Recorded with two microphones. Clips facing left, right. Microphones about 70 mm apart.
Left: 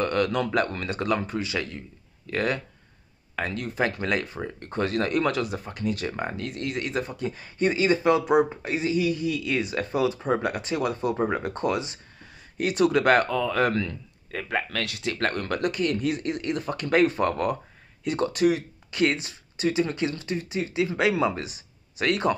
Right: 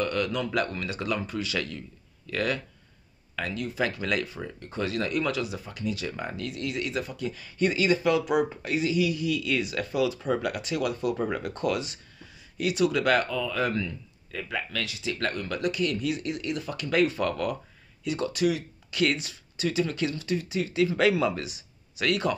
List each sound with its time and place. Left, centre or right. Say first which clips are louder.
0.0 s speech: left 4 dB; left
12.5 s speech: left 3 dB; left
14.3 s speech: left 4 dB; left